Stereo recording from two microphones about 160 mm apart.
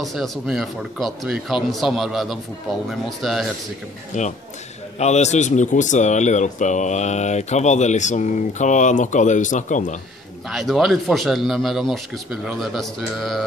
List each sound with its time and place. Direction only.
0.0 s speech: centre (ahead or behind)
4.1 s speech: 50° left (ahead or behind)
10.5 s speech: centre (ahead or behind)